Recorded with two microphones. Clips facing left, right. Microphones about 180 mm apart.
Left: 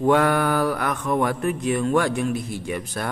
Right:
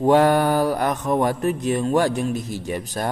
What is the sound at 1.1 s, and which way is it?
A man's voice, 35° right (ahead or behind).